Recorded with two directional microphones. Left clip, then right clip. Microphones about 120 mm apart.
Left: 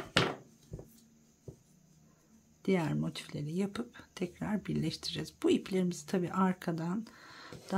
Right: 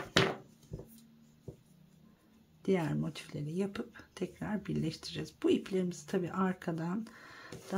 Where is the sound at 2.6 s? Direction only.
20° left (ahead or behind).